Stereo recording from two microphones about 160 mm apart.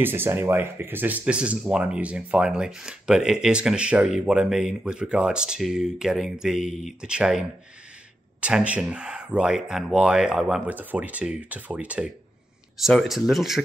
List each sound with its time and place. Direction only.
0.0 s speech: 15° right (ahead or behind)